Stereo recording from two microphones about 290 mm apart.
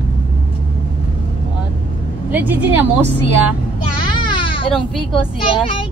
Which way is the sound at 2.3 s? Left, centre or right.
Centre.